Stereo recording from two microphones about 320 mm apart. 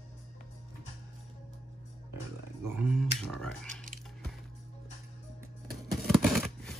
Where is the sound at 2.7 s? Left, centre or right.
Centre.